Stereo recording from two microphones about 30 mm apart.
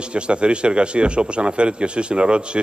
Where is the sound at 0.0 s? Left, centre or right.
Right.